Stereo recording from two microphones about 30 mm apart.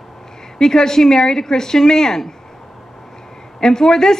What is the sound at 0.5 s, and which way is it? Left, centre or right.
A woman's voice, left.